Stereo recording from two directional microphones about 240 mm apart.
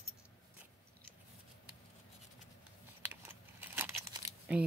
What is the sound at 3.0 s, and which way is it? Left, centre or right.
Crumpling, centre.